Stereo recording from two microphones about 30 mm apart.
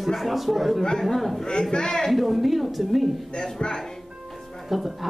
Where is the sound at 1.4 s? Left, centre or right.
Left.